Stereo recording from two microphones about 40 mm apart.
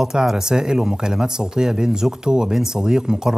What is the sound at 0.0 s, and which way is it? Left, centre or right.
A man's voice, centre.